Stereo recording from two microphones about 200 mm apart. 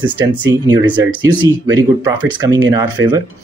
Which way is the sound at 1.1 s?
20° right (ahead or behind).